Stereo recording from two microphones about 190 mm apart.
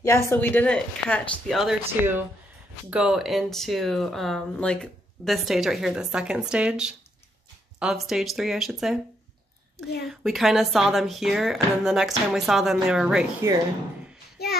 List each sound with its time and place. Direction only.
0.0 s speech: 15° left (ahead or behind)
10.0 s speech: centre (ahead or behind)
14.4 s child singing: 55° left (ahead or behind)